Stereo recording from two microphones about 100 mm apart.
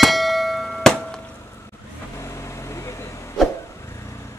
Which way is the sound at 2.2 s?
30° left (ahead or behind).